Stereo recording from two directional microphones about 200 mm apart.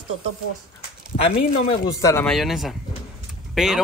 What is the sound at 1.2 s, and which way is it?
Speech, 25° left (ahead or behind).